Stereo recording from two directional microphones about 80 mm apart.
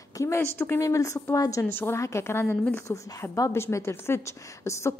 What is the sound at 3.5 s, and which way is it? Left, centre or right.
A woman's voice, left.